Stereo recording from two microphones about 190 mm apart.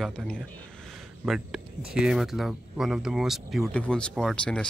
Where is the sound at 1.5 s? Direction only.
Centre (ahead or behind).